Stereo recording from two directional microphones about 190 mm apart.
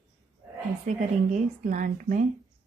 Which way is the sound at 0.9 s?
40° right (ahead or behind).